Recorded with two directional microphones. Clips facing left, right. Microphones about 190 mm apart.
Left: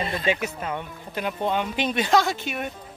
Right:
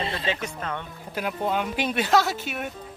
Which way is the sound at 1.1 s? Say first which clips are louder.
Left 1 dB; 5° right (ahead or behind).